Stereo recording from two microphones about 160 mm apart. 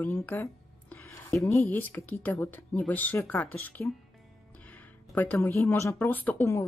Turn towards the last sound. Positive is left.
turn(degrees=15)  # may be behind; listen again after turning